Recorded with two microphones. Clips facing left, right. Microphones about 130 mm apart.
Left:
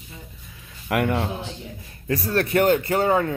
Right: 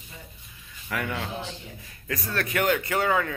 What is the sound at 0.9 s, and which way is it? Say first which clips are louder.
Speech: left 9 dB; 60° left (ahead or behind).